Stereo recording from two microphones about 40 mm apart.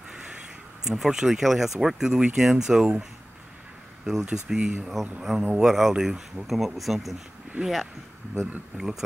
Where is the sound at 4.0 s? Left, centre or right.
Centre.